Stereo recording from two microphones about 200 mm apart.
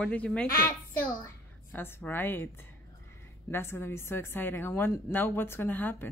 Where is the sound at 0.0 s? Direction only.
5° left (ahead or behind).